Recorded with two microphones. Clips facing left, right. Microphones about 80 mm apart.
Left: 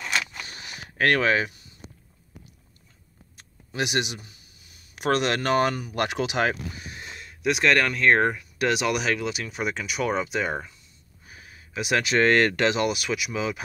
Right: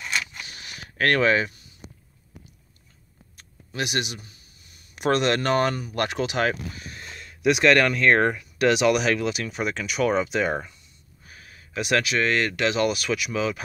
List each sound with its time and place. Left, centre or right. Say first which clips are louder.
0.6 s a sound: left 1 dB; left; by 1.5 s centre
3.3 s speech: left 1 dB; centre
4.6 s speech: right 1 dB; centre
7.2 s speech: right 3 dB; centre
11.2 s a sound: even; centre
12.2 s speech: left 4 dB; left
12.8 s speech: right 2 dB; centre